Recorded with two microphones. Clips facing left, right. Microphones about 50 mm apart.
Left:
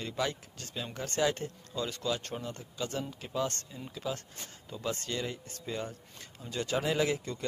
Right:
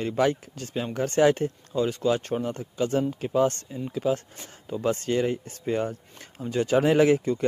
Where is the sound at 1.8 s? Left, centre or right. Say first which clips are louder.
Right 10 dB; right.